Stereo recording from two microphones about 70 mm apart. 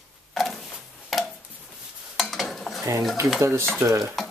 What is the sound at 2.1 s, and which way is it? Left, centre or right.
Stir, centre.